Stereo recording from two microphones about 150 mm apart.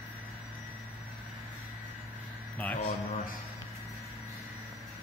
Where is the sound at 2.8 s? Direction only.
70° left (ahead or behind).